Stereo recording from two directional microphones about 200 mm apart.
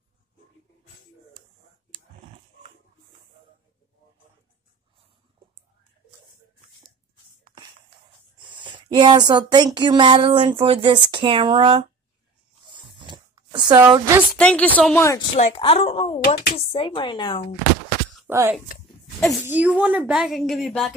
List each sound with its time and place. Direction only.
8.5 s speech: 25° right (ahead or behind)
12.7 s a sound: 25° right (ahead or behind)
14.3 s a woman's voice: 5° left (ahead or behind)
15.3 s speech: 30° left (ahead or behind)
18.3 s speech: 10° right (ahead or behind)
19.1 s a woman's voice: centre (ahead or behind)